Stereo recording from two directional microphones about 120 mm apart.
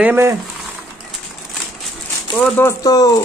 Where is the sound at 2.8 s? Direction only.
30° left (ahead or behind).